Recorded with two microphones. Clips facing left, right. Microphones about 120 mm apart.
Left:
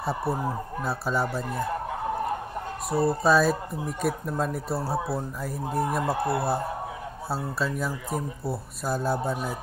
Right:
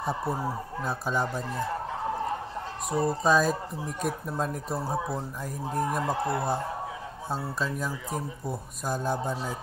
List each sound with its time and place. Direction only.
0.4 s speech: 15° left (ahead or behind)
0.8 s speech: 5° left (ahead or behind)
2.9 s speech: 5° left (ahead or behind)